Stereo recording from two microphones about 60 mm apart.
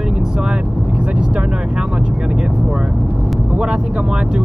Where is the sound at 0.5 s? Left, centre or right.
Centre.